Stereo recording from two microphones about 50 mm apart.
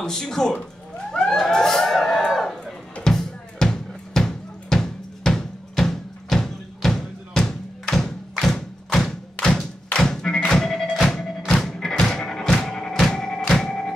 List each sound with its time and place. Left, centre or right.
0.0 s speech: centre
1.1 s a sound: centre
9.8 s thump: centre
10.4 s music: centre